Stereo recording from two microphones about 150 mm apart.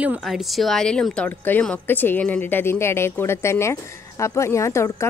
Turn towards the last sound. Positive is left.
turn(degrees=20)  # may be behind; listen again after turning